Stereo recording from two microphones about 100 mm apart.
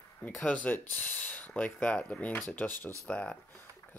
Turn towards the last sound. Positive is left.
turn(degrees=10)  # may be behind; listen again after turning